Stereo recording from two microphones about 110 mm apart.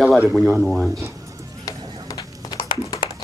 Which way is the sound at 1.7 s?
35° left (ahead or behind).